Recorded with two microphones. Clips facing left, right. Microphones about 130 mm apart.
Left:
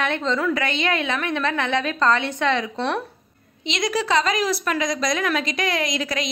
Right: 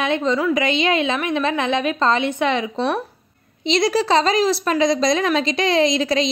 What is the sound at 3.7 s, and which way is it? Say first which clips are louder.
A woman's voice: right 5 dB; 30° right (ahead or behind).